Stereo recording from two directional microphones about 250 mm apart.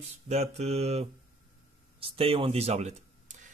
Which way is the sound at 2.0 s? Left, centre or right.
Right.